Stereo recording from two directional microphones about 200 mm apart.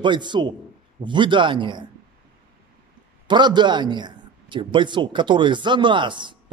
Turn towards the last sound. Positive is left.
turn(degrees=-25)  # may be behind; listen again after turning